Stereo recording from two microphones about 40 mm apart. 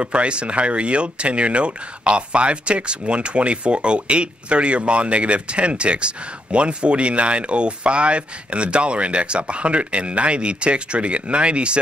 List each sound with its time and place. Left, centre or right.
0.0 s speech: right